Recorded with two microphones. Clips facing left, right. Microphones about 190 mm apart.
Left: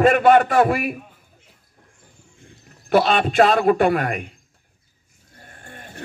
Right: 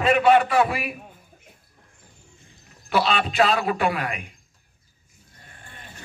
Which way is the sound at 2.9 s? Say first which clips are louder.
Left 5 dB; 50° left (ahead or behind).